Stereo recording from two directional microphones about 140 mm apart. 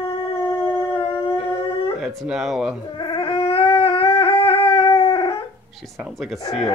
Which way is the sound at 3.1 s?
35° left (ahead or behind).